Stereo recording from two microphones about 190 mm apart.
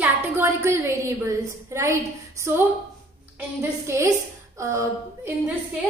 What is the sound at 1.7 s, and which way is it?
Speech, 15° right (ahead or behind).